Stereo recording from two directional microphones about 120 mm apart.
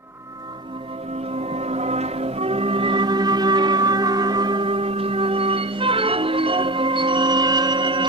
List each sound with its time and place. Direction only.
1.3 s music: 60° right (ahead or behind); by 8.1 s 40° right (ahead or behind)